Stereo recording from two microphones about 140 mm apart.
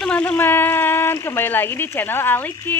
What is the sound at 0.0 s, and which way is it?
Speech, 10° left (ahead or behind).